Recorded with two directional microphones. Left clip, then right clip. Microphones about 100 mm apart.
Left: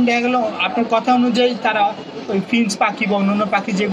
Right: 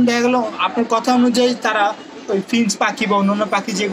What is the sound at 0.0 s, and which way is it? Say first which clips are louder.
A man's voice: even; 20° right (ahead or behind).